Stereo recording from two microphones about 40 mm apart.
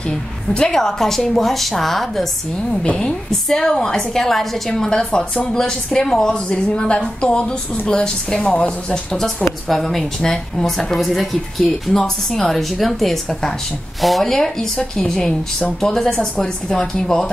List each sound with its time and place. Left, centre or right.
0.5 s speech: left
0.7 s speech: centre
9.4 s a sound: centre
10.2 s speech: centre
11.0 s a woman's voice: centre
11.9 s speech: centre